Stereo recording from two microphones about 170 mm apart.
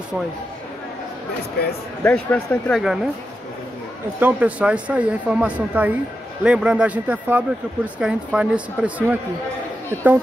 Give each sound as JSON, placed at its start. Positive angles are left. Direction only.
{"t": 1.6, "sound": "speech", "side_deg": 70}
{"t": 2.0, "sound": "speech", "side_deg": 5}
{"t": 4.2, "sound": "speech", "side_deg": -10}